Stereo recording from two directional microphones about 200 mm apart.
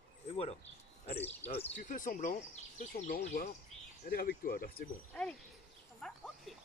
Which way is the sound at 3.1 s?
45° left (ahead or behind).